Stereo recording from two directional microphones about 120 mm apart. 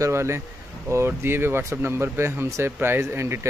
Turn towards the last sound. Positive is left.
turn(degrees=-20)  # may be behind; listen again after turning